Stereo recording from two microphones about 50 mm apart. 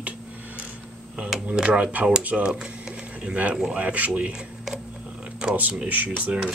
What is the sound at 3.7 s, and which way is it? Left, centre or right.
Speech, right.